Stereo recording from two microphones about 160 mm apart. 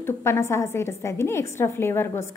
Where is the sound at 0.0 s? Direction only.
15° left (ahead or behind).